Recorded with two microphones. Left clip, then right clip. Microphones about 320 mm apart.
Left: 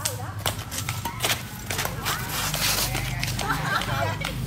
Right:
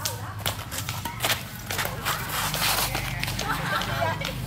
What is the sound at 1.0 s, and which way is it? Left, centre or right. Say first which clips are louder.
Keys jangling: even; centre.